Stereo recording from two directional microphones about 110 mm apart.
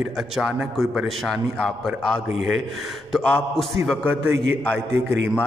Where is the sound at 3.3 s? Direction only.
5° left (ahead or behind).